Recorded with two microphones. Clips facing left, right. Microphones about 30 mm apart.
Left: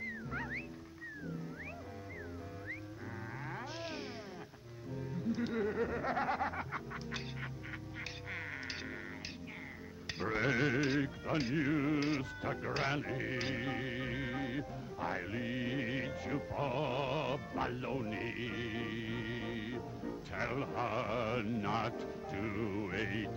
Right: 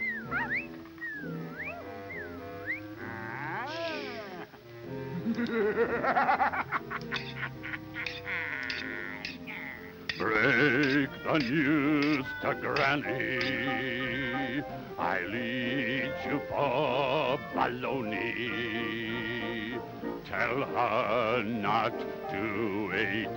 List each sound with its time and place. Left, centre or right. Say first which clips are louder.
0.0 s music: right 9 dB; right
3.4 s a sound: right 9 dB; right
5.1 s snicker: right 6 dB; right
8.0 s music: right 10 dB; right
10.1 s music: right 8 dB; right